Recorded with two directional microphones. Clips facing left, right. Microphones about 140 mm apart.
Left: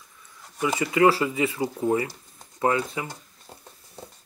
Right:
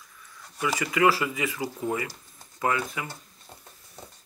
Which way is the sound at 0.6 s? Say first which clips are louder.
Left 4 dB; 30° left (ahead or behind).